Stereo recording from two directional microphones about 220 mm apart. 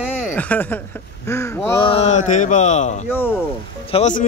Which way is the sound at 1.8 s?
30° left (ahead or behind).